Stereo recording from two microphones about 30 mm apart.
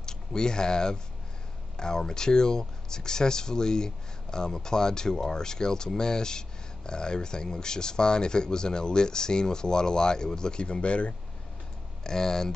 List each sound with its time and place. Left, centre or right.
0.0 s speech: left
12.0 s speech: centre